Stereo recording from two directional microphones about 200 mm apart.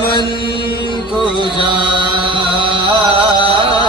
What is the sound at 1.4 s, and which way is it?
Chant, 25° right (ahead or behind).